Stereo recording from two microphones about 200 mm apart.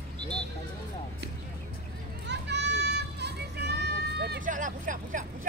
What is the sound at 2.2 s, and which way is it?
Vehicle, 60° right (ahead or behind).